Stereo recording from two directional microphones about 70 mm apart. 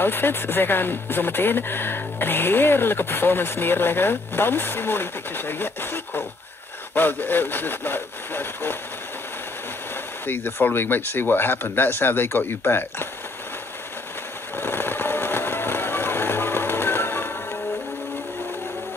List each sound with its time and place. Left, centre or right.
0.0 s speech: left
10.2 s speech: left
14.6 s vehicle: left